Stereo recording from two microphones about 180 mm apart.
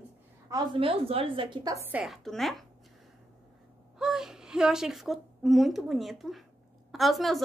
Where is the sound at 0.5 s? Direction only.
25° right (ahead or behind).